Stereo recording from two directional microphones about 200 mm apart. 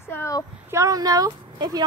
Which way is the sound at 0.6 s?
15° right (ahead or behind).